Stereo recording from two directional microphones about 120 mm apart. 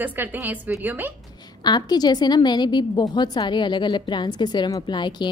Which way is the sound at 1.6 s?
35° left (ahead or behind).